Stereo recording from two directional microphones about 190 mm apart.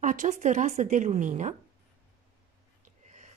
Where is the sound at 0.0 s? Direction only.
40° right (ahead or behind).